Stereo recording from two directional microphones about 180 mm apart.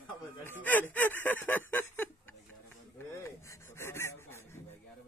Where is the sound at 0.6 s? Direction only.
10° left (ahead or behind).